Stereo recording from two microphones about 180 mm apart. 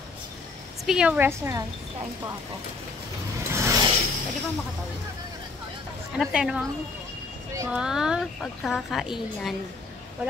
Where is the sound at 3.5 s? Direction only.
15° right (ahead or behind).